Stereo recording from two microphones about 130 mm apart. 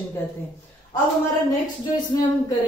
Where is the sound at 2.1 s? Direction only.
30° left (ahead or behind).